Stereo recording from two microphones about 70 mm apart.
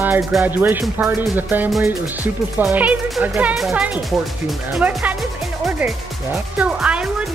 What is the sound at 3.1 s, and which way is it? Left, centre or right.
Speech, centre.